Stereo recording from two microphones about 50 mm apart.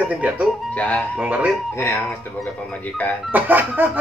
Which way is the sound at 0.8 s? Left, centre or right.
Left.